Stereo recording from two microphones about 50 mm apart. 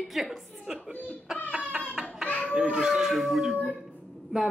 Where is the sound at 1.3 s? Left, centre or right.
Centre.